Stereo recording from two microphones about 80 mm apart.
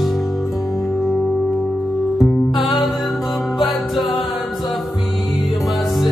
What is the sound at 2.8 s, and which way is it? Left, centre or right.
Music, centre.